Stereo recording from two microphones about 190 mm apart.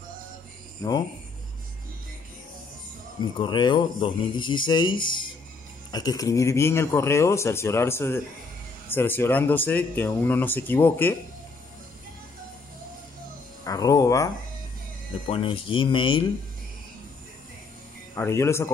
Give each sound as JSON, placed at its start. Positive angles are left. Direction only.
{"t": 0.8, "sound": "a man's voice", "side_deg": 15}
{"t": 3.2, "sound": "a man's voice", "side_deg": 25}
{"t": 13.7, "sound": "a sound", "side_deg": 20}
{"t": 15.2, "sound": "speech", "side_deg": 30}
{"t": 18.1, "sound": "a man's voice", "side_deg": 15}